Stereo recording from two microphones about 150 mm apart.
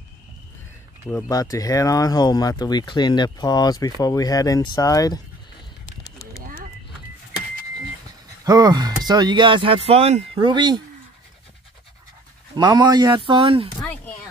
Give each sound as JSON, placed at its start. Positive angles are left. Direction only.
{"t": 1.0, "sound": "speech", "side_deg": 25}
{"t": 8.5, "sound": "speech", "side_deg": -25}
{"t": 10.5, "sound": "speech", "side_deg": -30}
{"t": 12.5, "sound": "speech", "side_deg": -25}